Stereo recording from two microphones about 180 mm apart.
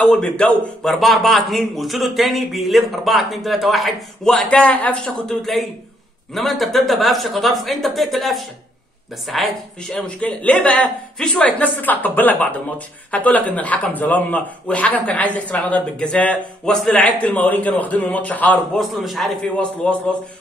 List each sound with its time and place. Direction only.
0.0 s a man's voice: 5° left (ahead or behind)